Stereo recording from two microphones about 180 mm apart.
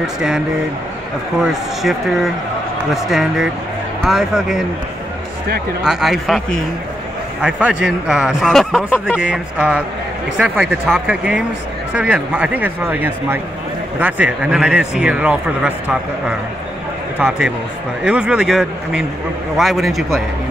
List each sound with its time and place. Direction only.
0.0 s a man's voice: 5° right (ahead or behind)
1.4 s a man's voice: centre (ahead or behind)
5.9 s a man's voice: centre (ahead or behind)
9.2 s a man's voice: 5° right (ahead or behind)